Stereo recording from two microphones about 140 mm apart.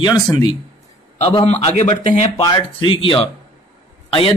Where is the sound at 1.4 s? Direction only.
50° left (ahead or behind).